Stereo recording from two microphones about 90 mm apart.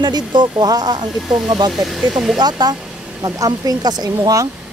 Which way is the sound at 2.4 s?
50° right (ahead or behind).